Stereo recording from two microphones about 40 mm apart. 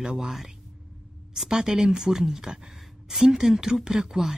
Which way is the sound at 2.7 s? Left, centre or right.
Centre.